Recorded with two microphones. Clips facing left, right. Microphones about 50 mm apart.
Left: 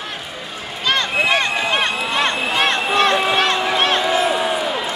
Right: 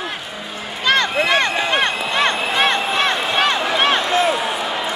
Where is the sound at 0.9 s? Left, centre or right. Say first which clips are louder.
Right 1 dB; right.